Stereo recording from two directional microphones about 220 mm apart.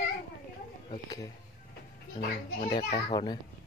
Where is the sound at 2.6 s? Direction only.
25° left (ahead or behind).